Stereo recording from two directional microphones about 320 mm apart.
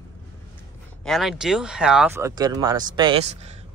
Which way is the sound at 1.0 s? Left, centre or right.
Centre.